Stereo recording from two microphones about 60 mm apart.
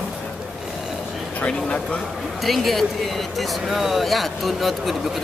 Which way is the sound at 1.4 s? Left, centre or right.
Centre.